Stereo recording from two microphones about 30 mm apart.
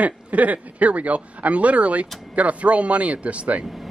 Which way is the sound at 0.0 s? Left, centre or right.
Right.